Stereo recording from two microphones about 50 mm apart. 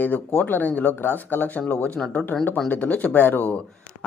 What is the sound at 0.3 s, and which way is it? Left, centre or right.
Speech, left.